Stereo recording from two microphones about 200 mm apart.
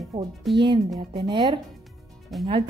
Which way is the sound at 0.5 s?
Centre (ahead or behind).